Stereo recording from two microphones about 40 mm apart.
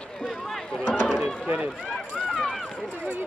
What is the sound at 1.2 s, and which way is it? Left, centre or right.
Run, right.